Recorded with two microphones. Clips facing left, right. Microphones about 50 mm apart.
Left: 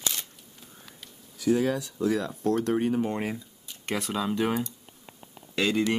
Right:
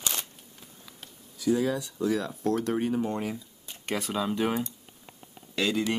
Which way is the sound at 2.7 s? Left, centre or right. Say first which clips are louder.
Left 2 dB; centre.